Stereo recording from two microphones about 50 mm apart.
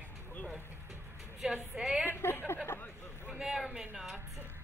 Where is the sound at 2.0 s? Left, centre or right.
Left.